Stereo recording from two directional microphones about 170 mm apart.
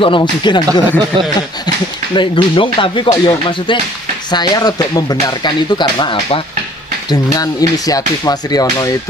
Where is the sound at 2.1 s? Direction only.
30° left (ahead or behind).